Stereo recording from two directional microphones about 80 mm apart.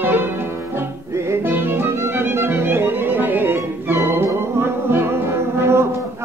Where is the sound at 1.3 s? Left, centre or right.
Right.